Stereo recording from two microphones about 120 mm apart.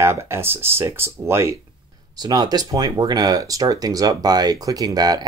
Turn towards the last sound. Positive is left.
turn(degrees=-35)  # may be behind; listen again after turning